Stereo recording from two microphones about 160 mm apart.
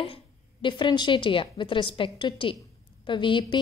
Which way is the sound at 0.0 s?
35° left (ahead or behind).